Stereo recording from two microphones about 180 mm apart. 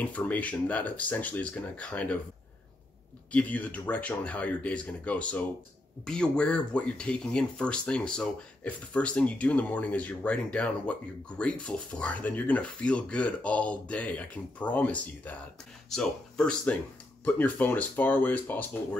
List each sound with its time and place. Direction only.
0.0 s speech: 10° left (ahead or behind)
3.3 s speech: 10° left (ahead or behind)